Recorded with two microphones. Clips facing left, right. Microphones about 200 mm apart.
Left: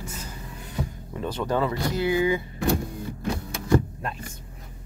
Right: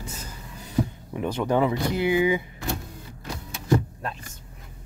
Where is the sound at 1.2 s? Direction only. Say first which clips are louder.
Right 3 dB; 10° right (ahead or behind).